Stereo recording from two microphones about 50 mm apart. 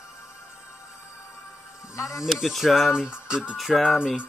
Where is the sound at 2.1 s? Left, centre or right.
Centre.